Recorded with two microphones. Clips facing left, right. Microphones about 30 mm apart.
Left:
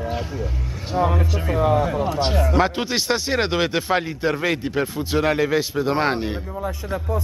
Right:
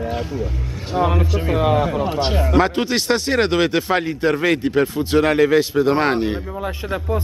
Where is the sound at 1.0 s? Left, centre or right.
Centre.